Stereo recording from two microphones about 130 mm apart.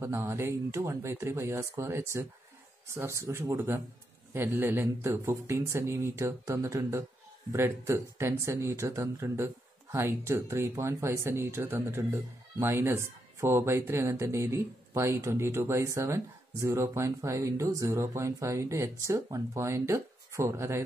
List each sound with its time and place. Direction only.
0.0 s speech: 25° right (ahead or behind)